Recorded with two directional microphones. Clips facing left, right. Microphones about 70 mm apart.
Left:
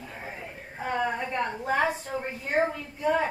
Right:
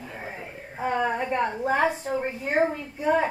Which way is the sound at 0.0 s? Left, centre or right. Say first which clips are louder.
Right 2 dB; centre.